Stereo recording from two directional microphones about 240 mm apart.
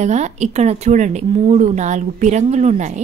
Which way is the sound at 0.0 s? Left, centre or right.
Right.